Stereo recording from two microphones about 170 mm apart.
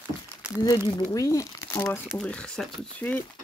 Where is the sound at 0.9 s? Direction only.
20° left (ahead or behind).